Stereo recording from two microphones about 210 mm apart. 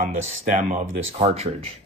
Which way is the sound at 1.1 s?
30° right (ahead or behind).